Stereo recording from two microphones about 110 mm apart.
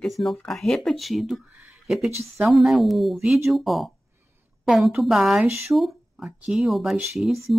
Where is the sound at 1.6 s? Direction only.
5° right (ahead or behind).